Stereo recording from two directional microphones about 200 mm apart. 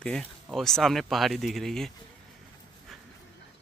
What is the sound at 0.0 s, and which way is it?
Speech, 5° left (ahead or behind).